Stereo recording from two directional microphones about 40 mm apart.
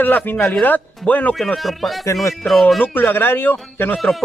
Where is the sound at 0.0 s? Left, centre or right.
Left.